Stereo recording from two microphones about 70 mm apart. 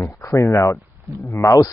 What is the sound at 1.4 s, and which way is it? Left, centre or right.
Speech, left.